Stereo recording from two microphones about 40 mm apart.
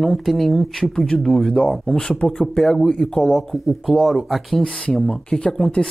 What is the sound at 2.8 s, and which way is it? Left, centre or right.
Speech, centre.